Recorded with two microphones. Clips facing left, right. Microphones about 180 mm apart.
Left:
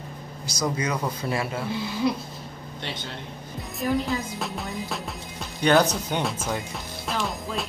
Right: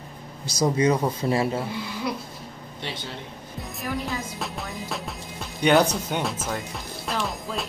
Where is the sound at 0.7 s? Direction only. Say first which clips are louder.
Right 6 dB; 30° right (ahead or behind).